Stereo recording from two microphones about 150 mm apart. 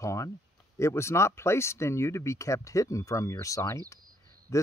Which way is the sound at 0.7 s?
20° left (ahead or behind).